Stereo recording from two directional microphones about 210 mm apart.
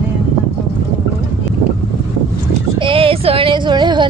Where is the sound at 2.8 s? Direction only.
25° right (ahead or behind).